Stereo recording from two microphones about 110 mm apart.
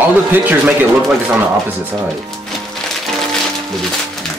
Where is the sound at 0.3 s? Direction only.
15° right (ahead or behind).